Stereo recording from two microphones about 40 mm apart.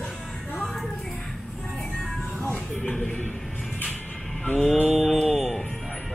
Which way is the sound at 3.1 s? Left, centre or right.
Left.